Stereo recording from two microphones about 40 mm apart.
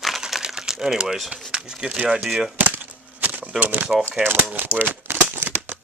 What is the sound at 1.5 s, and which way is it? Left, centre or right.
Speech, centre.